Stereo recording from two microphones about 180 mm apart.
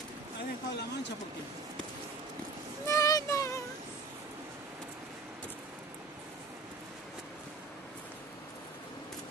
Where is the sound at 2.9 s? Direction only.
20° left (ahead or behind).